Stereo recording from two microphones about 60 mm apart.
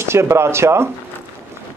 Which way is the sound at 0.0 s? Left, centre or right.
Right.